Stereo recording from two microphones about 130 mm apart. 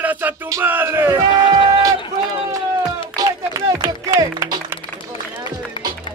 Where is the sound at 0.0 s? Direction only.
15° right (ahead or behind).